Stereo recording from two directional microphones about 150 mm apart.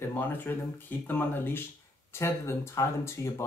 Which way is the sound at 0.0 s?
15° left (ahead or behind).